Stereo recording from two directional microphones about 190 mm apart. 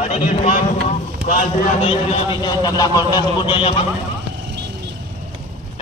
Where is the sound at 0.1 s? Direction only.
35° left (ahead or behind).